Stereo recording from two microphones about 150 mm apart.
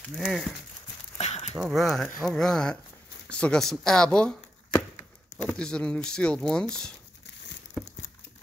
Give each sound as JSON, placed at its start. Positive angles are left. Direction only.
{"t": 0.1, "sound": "speech", "side_deg": 0}
{"t": 1.1, "sound": "a sound", "side_deg": 45}
{"t": 1.6, "sound": "speech", "side_deg": 0}